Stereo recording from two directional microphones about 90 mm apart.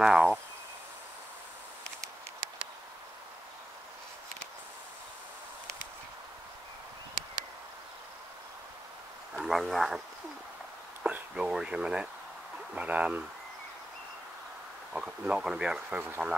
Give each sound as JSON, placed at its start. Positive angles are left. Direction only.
{"t": 0.0, "sound": "speech", "side_deg": -10}
{"t": 9.3, "sound": "speech", "side_deg": 0}
{"t": 11.1, "sound": "speech", "side_deg": -10}
{"t": 14.9, "sound": "speech", "side_deg": -10}